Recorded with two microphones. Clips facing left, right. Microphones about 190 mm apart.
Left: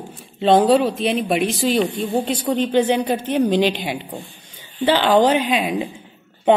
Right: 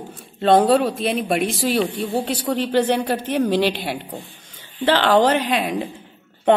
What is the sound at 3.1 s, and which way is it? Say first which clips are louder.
Speech: left 2 dB; 5° right (ahead or behind).